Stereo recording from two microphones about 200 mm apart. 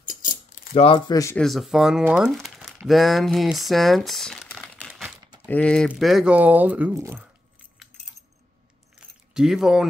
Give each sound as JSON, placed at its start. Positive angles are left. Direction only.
{"t": 0.0, "sound": "mechanisms", "side_deg": 40}
{"t": 0.8, "sound": "speech", "side_deg": 20}
{"t": 1.3, "sound": "speech", "side_deg": 0}
{"t": 2.9, "sound": "crumpling", "side_deg": 0}
{"t": 5.5, "sound": "speech", "side_deg": 5}
{"t": 9.3, "sound": "speech", "side_deg": -5}